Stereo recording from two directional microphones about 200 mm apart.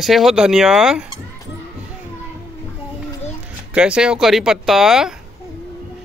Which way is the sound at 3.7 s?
5° right (ahead or behind).